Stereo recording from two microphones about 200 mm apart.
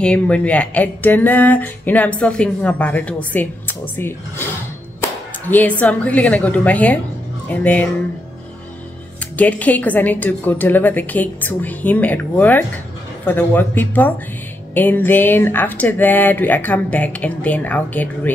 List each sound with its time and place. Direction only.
0.0 s speech: 5° left (ahead or behind)
9.4 s speech: 5° left (ahead or behind)